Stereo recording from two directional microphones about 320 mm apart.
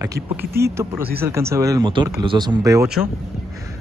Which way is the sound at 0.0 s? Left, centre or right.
Centre.